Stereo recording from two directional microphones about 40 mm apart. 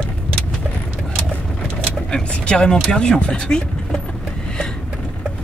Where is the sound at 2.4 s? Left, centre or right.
Left.